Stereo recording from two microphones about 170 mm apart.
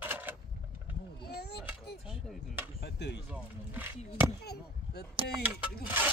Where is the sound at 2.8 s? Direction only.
75° left (ahead or behind).